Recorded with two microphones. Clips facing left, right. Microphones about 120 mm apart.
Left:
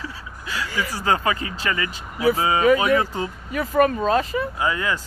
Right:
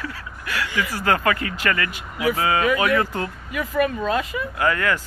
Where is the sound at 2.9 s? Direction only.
10° left (ahead or behind).